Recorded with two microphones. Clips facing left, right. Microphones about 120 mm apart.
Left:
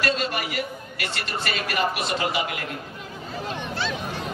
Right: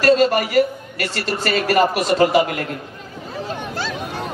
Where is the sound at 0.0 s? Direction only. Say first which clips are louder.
Right 11 dB; 40° right (ahead or behind).